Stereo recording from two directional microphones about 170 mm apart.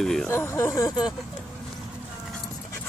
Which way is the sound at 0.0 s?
5° left (ahead or behind).